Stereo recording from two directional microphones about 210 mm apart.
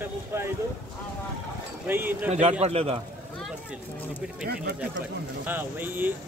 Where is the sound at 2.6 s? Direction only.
30° right (ahead or behind).